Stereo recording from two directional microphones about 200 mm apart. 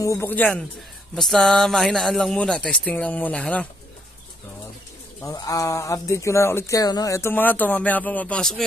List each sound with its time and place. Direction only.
0.0 s speech: 15° left (ahead or behind)
5.2 s speech: 15° left (ahead or behind)